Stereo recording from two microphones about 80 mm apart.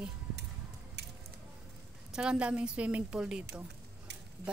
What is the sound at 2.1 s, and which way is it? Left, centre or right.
A woman's voice, centre.